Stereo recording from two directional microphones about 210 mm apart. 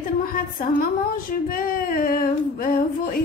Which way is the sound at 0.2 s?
40° left (ahead or behind).